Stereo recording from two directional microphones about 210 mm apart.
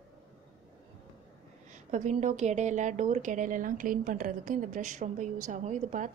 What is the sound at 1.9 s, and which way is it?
A woman's voice, 35° right (ahead or behind).